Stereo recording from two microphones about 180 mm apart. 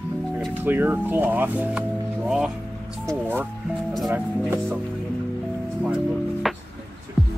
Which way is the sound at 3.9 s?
Centre (ahead or behind).